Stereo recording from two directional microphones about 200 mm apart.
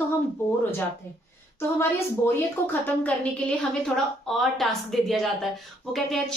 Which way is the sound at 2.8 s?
5° left (ahead or behind).